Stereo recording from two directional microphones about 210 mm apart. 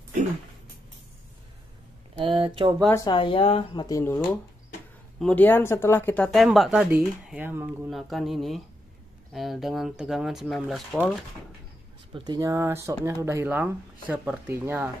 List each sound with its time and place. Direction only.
2.1 s a sound: 25° right (ahead or behind)
2.9 s speech: 20° left (ahead or behind)
5.2 s speech: 10° left (ahead or behind)
12.1 s speech: 15° right (ahead or behind)